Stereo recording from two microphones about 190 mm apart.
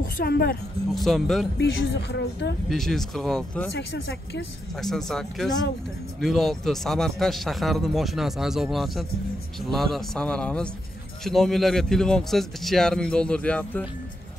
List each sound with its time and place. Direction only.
0.0 s a woman's voice: 55° left (ahead or behind)
0.9 s speech: centre (ahead or behind)
1.6 s a woman's voice: 65° left (ahead or behind)
2.7 s speech: centre (ahead or behind)
3.7 s a woman's voice: 60° left (ahead or behind)
4.7 s speech: centre (ahead or behind)